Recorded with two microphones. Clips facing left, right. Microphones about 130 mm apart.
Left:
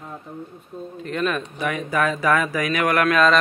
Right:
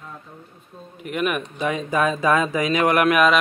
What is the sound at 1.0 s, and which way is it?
Speech, 15° right (ahead or behind).